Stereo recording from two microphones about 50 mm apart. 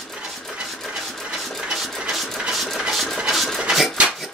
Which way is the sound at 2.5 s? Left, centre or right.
Centre.